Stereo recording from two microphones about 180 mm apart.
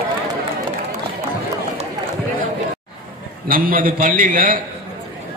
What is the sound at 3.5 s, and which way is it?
A man's voice, 50° right (ahead or behind).